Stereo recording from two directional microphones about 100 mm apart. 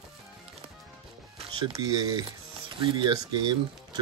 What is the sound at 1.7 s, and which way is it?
Speech, 45° right (ahead or behind).